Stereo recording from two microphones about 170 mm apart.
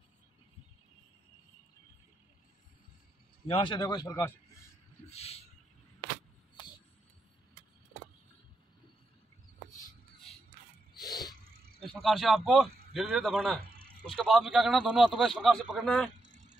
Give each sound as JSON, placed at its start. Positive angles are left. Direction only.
{"t": 3.4, "sound": "speech", "side_deg": 30}
{"t": 5.1, "sound": "bird", "side_deg": 35}
{"t": 11.0, "sound": "a sound", "side_deg": 25}
{"t": 11.9, "sound": "a man's voice", "side_deg": 0}
{"t": 13.6, "sound": "a sound", "side_deg": -60}
{"t": 14.0, "sound": "a man's voice", "side_deg": 0}